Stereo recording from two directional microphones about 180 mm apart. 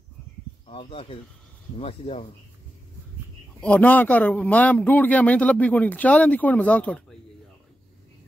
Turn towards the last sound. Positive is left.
turn(degrees=5)  # may be behind; listen again after turning